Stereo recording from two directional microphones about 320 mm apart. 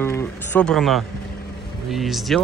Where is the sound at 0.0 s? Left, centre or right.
Centre.